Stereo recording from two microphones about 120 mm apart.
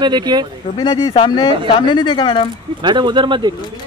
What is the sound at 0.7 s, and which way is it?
Speech, 45° left (ahead or behind).